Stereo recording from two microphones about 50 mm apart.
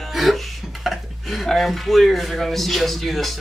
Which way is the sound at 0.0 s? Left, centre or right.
Centre.